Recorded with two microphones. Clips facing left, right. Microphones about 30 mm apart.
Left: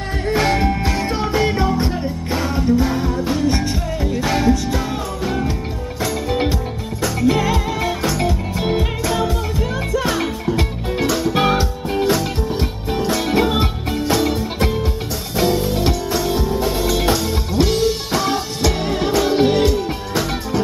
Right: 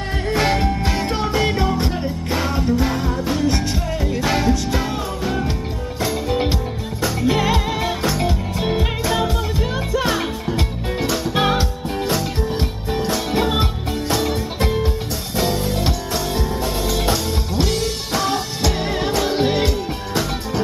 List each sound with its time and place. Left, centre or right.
0.3 s music: centre
8.5 s music: centre